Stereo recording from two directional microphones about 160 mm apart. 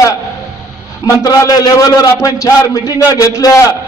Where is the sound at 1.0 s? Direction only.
20° left (ahead or behind).